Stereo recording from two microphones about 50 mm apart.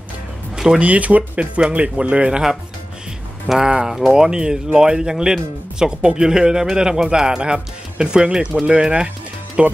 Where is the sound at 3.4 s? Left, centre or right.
Centre.